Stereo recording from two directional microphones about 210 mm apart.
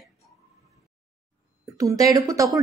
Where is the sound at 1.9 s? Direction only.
15° right (ahead or behind).